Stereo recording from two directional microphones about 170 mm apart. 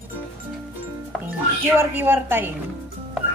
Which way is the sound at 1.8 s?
15° right (ahead or behind).